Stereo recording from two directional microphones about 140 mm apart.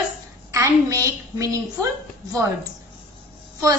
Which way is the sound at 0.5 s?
25° right (ahead or behind).